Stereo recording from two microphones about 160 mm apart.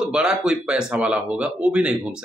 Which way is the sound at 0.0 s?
5° right (ahead or behind).